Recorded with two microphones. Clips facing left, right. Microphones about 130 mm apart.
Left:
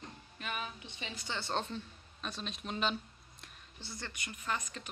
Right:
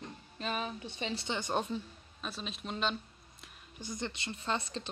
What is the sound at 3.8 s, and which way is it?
Speech, 20° right (ahead or behind).